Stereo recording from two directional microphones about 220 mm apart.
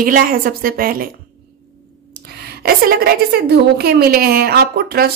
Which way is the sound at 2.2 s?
45° right (ahead or behind).